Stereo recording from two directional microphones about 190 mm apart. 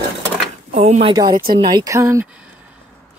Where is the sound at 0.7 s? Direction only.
35° right (ahead or behind).